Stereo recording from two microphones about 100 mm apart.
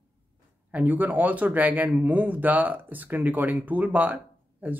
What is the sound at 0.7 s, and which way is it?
A man's voice, 15° right (ahead or behind).